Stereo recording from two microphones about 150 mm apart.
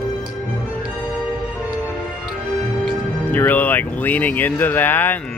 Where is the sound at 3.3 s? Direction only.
10° left (ahead or behind).